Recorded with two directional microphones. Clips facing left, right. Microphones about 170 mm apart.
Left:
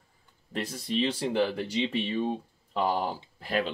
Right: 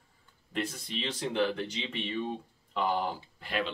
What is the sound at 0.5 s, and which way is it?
Speech, 35° left (ahead or behind).